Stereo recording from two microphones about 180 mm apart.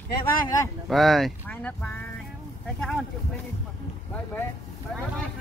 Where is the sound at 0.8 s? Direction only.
Centre (ahead or behind).